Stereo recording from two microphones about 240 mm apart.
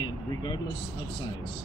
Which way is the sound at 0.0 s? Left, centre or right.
Centre.